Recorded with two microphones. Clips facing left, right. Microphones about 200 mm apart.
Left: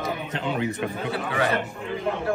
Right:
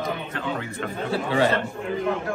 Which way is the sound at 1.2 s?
30° right (ahead or behind).